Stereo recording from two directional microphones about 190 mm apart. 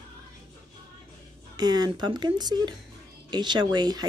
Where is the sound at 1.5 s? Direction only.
20° right (ahead or behind).